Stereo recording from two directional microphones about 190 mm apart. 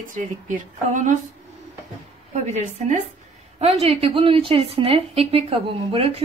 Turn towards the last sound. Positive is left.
turn(degrees=-30)  # may be behind; listen again after turning